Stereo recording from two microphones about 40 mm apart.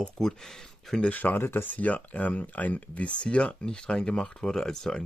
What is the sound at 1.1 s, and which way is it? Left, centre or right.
Speech, left.